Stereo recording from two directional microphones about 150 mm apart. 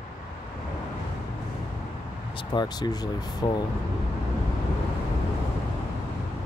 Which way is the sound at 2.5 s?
30° left (ahead or behind).